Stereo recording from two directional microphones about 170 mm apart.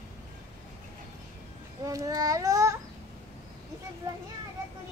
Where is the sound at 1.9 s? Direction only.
20° right (ahead or behind).